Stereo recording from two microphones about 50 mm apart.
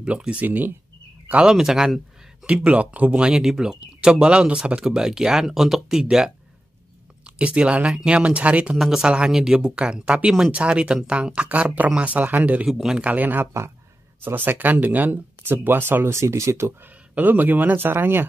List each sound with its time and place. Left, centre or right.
0.0 s speech: right
1.4 s speech: centre
7.2 s speech: right
8.7 s speech: centre
9.0 s speech: centre
12.6 s speech: centre
13.0 s speech: right
16.1 s speech: right
16.8 s speech: right